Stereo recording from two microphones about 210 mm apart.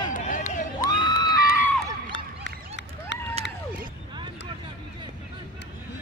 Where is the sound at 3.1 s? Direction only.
55° left (ahead or behind).